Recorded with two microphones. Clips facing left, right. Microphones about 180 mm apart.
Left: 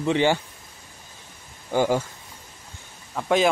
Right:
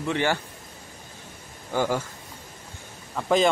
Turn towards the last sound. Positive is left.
turn(degrees=5)  # may be behind; listen again after turning